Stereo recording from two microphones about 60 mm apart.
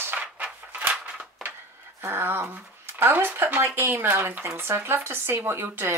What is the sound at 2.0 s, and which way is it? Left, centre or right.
A woman's voice, right.